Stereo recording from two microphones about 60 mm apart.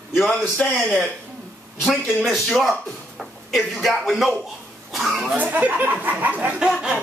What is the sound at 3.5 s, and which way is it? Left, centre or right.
Speech, centre.